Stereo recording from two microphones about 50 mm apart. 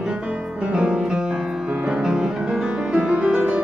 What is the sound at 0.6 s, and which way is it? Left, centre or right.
Music, right.